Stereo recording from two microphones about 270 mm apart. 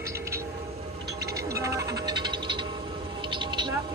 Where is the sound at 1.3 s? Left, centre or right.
Centre.